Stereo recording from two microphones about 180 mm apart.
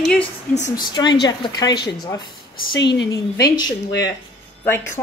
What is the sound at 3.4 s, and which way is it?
Speech, 20° left (ahead or behind).